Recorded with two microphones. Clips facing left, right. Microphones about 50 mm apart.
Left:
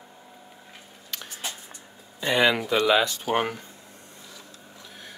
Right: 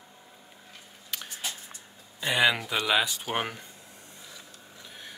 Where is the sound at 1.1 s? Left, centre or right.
Centre.